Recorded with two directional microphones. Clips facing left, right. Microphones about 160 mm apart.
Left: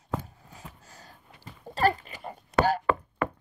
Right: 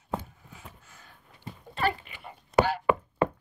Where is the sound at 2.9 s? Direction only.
15° right (ahead or behind).